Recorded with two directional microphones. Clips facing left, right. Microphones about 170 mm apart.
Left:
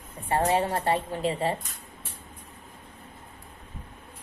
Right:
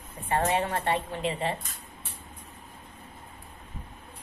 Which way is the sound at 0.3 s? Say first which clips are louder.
Left 2 dB; 35° left (ahead or behind).